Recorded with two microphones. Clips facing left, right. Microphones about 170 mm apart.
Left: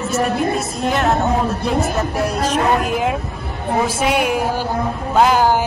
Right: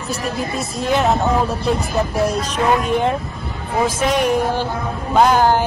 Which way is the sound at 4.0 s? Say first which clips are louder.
Right 1 dB; 10° left (ahead or behind).